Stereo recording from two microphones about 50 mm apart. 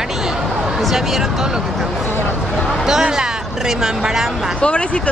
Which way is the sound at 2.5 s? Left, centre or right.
Centre.